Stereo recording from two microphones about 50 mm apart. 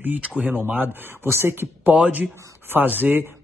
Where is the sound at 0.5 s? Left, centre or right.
Right.